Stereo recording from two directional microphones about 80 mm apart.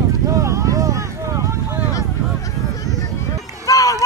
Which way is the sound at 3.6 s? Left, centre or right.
Left.